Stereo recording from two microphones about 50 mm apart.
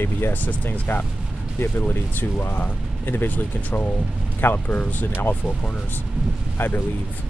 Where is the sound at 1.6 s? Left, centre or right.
Left.